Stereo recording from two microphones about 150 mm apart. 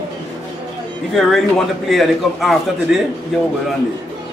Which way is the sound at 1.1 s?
Centre (ahead or behind).